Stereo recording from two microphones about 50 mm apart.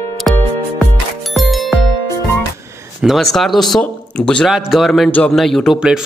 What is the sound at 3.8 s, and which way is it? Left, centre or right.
Speech, left.